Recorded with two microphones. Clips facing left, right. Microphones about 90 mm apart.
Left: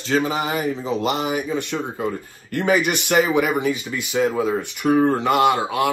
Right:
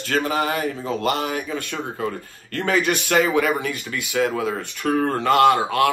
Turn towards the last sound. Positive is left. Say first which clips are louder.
# right 2 dB
turn(degrees=15)  # may be behind; listen again after turning